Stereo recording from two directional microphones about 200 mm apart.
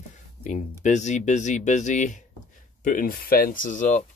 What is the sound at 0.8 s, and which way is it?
Speech, 35° left (ahead or behind).